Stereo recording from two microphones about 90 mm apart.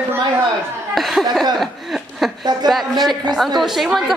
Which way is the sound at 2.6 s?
50° right (ahead or behind).